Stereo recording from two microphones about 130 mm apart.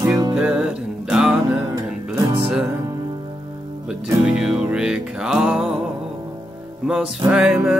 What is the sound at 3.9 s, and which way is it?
Music, 5° right (ahead or behind).